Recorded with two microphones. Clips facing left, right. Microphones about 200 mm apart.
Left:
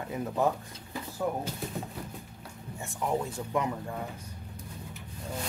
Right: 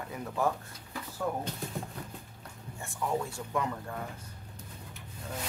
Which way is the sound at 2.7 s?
20° left (ahead or behind).